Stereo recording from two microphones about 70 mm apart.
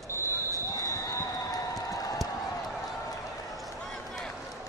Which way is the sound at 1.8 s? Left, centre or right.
Left.